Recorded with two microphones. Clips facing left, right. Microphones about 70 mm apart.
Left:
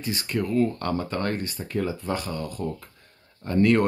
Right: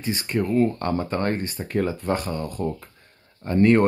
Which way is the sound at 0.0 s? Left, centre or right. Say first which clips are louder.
Right 3 dB; right.